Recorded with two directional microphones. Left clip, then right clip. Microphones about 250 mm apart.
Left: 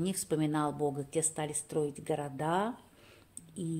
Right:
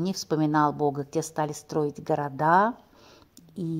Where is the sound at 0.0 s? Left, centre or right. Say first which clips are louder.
Right 6 dB; centre.